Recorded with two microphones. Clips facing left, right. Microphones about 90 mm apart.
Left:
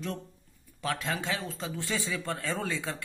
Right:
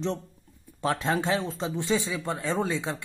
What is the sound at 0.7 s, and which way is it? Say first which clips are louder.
Speech: right 6 dB; 30° right (ahead or behind).